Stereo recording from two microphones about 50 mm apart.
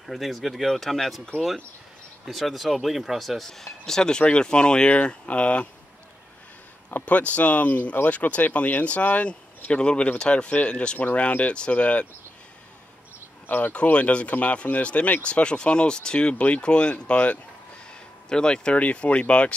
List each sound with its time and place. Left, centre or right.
0.0 s speech: centre
2.2 s speech: centre; by 5.7 s left
7.1 s speech: left
11.0 s speech: left
13.5 s speech: left
13.7 s speech: left
18.3 s speech: centre
18.8 s speech: left